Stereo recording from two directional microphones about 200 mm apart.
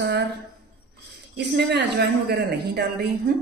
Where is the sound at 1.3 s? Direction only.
55° right (ahead or behind).